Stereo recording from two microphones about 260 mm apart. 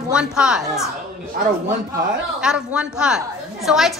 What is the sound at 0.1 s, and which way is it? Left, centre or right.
Speech, centre.